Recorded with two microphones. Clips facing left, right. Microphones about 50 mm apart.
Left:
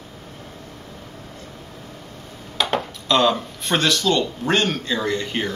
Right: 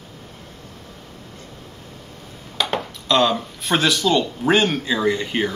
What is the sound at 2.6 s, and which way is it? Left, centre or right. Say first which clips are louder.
Speech: left 1 dB; centre.